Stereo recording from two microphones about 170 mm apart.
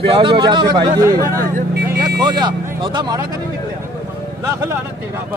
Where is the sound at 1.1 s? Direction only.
60° right (ahead or behind).